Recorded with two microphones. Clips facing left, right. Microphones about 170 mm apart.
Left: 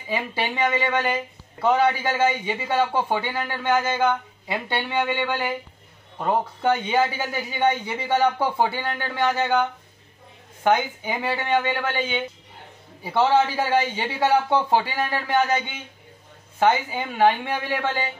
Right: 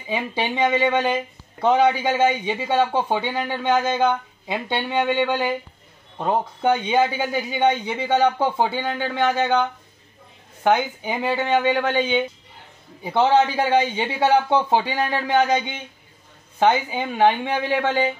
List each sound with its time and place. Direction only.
0.6 s speech: 20° right (ahead or behind)
3.7 s speech: 5° left (ahead or behind)
4.1 s speech: 15° right (ahead or behind)
10.6 s speech: 15° right (ahead or behind)